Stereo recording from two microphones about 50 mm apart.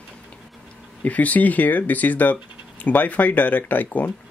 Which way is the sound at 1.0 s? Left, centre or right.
Left.